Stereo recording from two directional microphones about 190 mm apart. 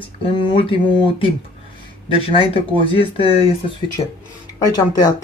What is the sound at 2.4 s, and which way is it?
Speech, 30° left (ahead or behind).